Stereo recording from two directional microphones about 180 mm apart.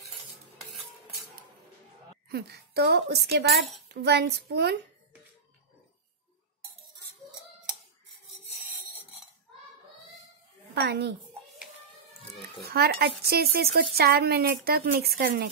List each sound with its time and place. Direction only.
2.2 s a woman's voice: 65° right (ahead or behind)
10.7 s a woman's voice: 65° right (ahead or behind)
12.6 s speech: 60° right (ahead or behind)